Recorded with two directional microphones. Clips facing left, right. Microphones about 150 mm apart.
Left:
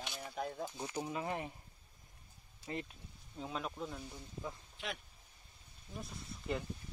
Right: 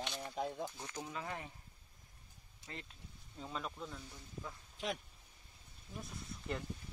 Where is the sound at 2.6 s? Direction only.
20° right (ahead or behind).